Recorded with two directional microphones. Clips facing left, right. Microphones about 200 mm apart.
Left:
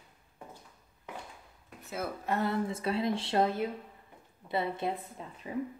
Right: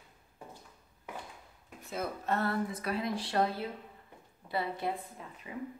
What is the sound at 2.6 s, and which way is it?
A woman's voice, 25° left (ahead or behind).